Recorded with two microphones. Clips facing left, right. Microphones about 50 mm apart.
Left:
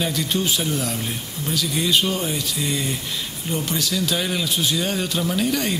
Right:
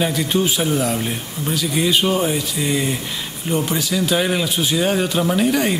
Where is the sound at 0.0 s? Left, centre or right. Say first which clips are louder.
Right 4 dB; centre.